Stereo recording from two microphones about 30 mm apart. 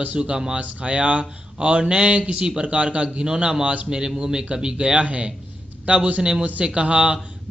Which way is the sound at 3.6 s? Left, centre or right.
Right.